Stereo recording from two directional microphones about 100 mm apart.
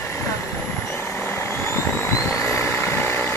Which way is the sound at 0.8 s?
25° left (ahead or behind).